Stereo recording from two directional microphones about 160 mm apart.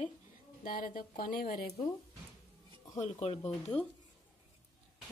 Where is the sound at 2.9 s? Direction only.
40° left (ahead or behind).